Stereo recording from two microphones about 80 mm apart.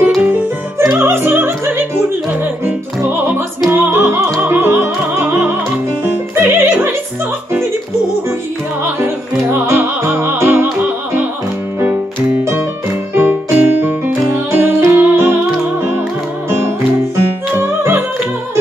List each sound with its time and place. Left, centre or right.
0.2 s opera: right
3.7 s music: right
8.8 s music: right
13.1 s music: right
16.4 s music: right